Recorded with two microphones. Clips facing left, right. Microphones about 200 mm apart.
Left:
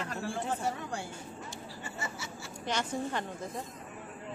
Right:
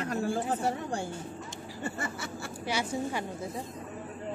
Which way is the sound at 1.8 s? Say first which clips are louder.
Right 7 dB; 55° right (ahead or behind).